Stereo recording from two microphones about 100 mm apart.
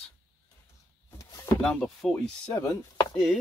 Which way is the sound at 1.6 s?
10° left (ahead or behind).